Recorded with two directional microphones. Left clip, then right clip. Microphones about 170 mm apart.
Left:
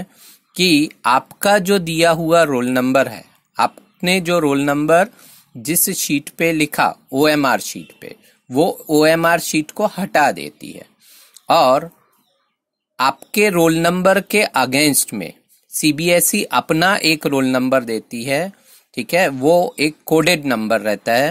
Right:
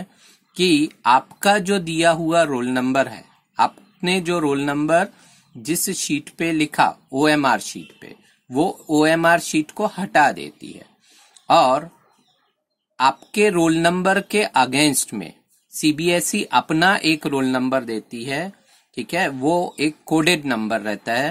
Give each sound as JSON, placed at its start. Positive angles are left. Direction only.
{"t": 0.6, "sound": "speech", "side_deg": 35}
{"t": 12.9, "sound": "speech", "side_deg": 35}